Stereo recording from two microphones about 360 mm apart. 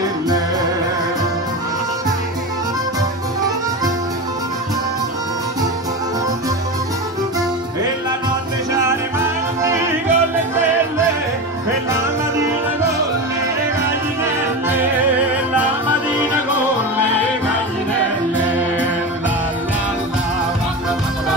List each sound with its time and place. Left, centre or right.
8.8 s music: centre
14.2 s music: centre